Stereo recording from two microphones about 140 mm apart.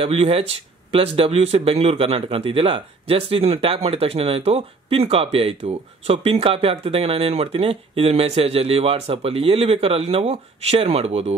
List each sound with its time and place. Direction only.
0.0 s speech: 45° right (ahead or behind)